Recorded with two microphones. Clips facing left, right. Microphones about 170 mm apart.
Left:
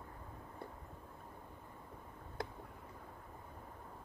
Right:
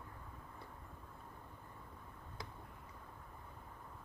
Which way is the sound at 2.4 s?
55° left (ahead or behind).